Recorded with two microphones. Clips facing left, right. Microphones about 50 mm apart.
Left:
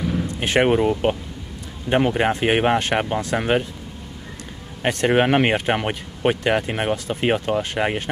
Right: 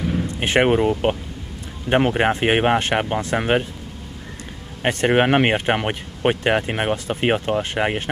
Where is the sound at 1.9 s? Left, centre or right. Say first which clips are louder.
Right 1 dB; right.